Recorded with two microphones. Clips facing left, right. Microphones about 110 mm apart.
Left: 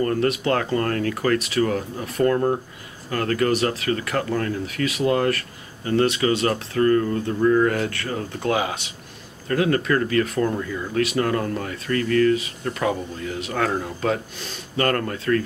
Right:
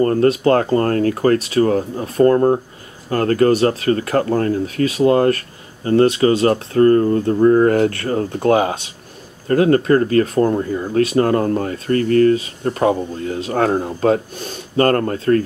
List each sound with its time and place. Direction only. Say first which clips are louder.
0.0 s speech: right 7 dB; 35° right (ahead or behind)